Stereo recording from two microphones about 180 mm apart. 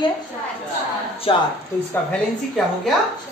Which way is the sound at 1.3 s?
30° left (ahead or behind).